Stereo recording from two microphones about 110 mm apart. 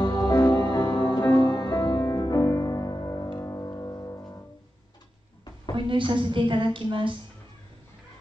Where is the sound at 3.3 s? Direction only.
25° left (ahead or behind).